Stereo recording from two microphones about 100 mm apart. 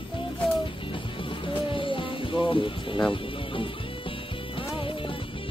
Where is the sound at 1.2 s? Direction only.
60° left (ahead or behind).